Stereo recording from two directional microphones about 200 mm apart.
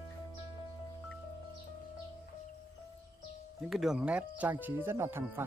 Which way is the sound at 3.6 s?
Centre (ahead or behind).